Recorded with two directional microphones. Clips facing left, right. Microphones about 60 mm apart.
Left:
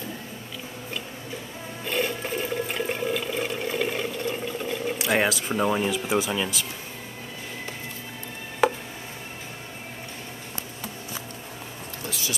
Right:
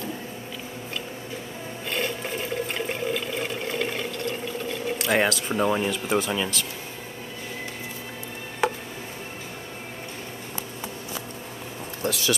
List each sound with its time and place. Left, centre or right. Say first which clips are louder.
1.9 s toilet flush: left 2 dB; centre
12.1 s speech: right 8 dB; right